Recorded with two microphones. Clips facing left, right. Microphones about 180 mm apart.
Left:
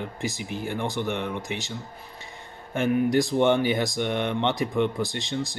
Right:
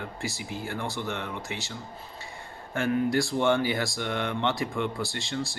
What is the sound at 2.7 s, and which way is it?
Speech, 20° left (ahead or behind).